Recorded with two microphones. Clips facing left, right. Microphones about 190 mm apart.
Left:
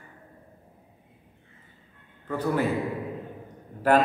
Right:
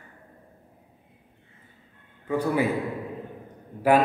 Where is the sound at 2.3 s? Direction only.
10° right (ahead or behind).